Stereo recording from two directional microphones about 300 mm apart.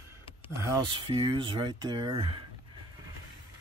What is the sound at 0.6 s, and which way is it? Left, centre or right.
Speech, centre.